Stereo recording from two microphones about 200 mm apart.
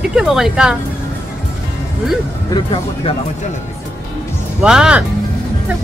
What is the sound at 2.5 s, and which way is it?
Speech, 25° left (ahead or behind).